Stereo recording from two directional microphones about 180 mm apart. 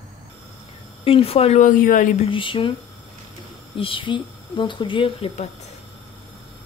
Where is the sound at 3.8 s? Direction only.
30° left (ahead or behind).